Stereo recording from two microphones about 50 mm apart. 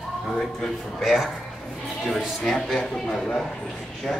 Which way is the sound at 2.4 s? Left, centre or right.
Centre.